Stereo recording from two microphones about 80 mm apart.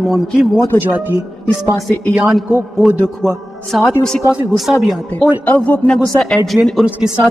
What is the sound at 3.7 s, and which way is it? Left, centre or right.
A man's voice, centre.